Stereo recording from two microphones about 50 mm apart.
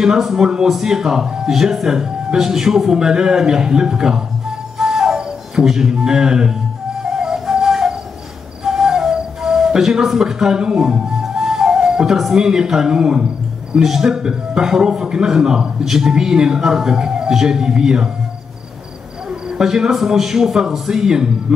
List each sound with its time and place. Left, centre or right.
0.0 s a man's voice: centre
4.7 s music: centre
13.7 s a man's voice: centre
19.6 s a man's voice: centre